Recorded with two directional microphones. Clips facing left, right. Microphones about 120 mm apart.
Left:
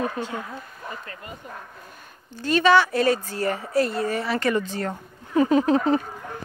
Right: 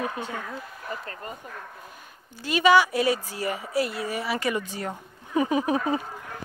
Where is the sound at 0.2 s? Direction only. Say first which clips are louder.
Left 3 dB; 15° right (ahead or behind).